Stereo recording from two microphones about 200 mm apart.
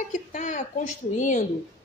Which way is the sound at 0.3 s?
40° left (ahead or behind).